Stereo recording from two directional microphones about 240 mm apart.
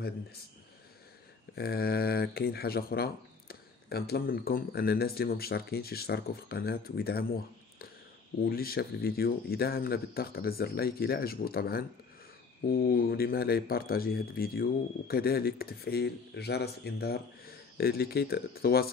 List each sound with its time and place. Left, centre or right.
1.5 s speech: left
8.4 s speech: left